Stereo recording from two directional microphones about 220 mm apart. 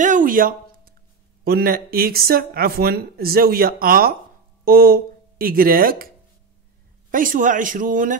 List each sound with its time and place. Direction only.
0.0 s a sound: 35° right (ahead or behind)
1.4 s speech: 45° right (ahead or behind)
7.1 s speech: 40° right (ahead or behind)